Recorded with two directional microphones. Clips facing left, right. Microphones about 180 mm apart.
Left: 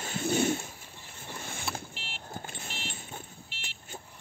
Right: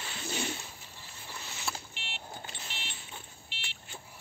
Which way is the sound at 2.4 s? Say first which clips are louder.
Left 4 dB; 50° left (ahead or behind).